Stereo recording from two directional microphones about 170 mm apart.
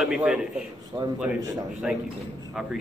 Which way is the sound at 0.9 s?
30° right (ahead or behind).